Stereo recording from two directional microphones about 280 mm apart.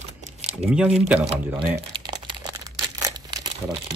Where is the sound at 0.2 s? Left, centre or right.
Right.